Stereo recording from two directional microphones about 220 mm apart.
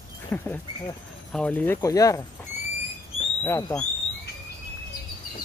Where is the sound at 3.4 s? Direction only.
10° left (ahead or behind).